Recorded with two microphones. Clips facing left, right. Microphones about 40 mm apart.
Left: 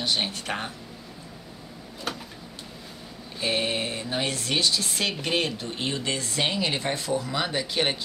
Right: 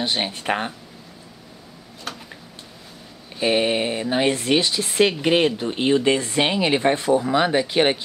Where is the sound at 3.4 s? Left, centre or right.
Right.